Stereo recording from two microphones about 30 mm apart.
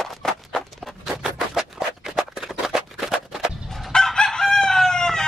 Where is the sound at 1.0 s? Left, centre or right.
Centre.